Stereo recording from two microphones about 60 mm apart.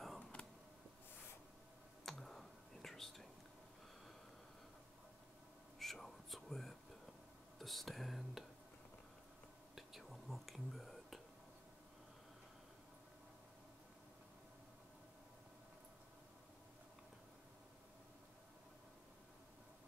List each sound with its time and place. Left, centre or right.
0.2 s a sound: left
2.0 s whispering: centre
5.8 s whispering: centre
9.8 s whispering: centre